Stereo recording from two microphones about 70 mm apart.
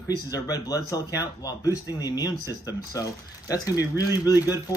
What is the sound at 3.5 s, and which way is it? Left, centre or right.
Speech, left.